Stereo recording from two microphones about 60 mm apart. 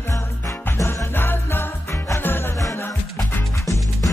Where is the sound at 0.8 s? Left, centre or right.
Left.